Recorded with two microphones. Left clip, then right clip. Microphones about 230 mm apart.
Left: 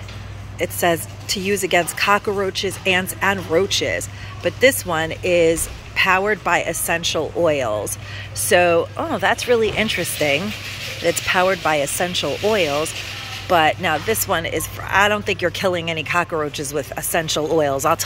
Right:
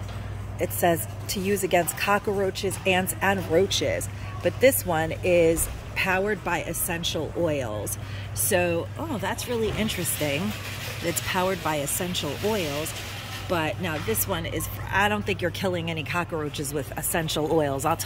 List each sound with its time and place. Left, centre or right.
0.6 s speech: centre
2.0 s speech: left
2.5 s speech: centre